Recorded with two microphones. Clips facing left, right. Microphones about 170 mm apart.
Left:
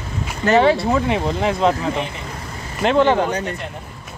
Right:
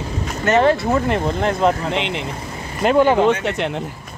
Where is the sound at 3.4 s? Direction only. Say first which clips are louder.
Right 4 dB; 85° right.